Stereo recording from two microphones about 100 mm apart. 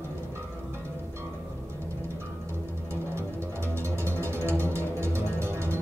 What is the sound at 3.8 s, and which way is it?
Music, 25° right (ahead or behind).